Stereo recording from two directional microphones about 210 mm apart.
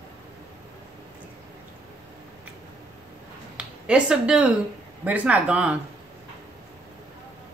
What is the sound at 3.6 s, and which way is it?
Speech, 5° right (ahead or behind).